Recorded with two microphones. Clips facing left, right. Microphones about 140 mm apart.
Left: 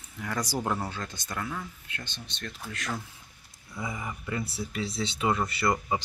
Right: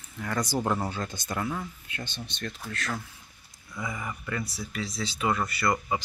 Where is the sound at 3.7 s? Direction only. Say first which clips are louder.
Right 1 dB; 20° left (ahead or behind).